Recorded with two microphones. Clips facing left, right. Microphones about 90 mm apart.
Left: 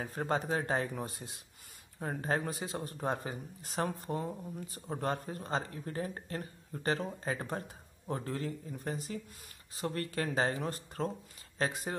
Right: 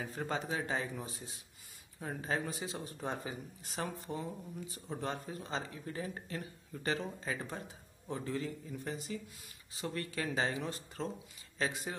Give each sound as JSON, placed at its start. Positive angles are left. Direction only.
{"t": 0.0, "sound": "speech", "side_deg": 45}